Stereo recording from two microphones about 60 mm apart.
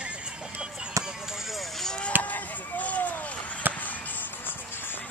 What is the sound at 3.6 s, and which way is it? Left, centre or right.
Music, right.